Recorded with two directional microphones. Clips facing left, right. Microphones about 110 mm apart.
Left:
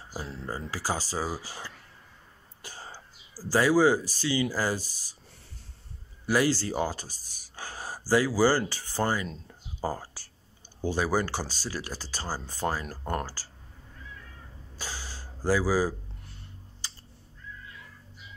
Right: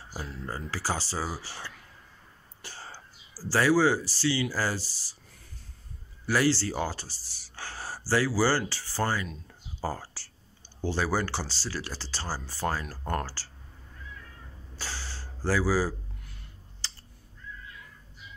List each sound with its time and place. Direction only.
0.5 s speech: 15° left (ahead or behind)
2.6 s whispering: 15° left (ahead or behind)
3.4 s speech: 15° left (ahead or behind)
6.2 s speech: 15° left (ahead or behind)
9.8 s a sound: 15° left (ahead or behind)
10.8 s speech: 15° left (ahead or behind)
14.8 s a sound: 15° left (ahead or behind)
16.8 s crow: 15° left (ahead or behind)